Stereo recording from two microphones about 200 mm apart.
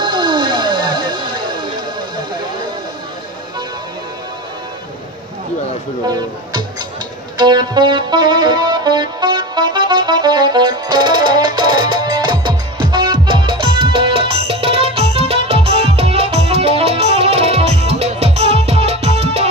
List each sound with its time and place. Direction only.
0.0 s a sound: 25° right (ahead or behind)
6.0 s speech: 20° right (ahead or behind)
7.3 s music: 20° right (ahead or behind)